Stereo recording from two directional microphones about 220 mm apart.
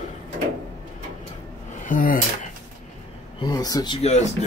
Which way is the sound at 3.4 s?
15° left (ahead or behind).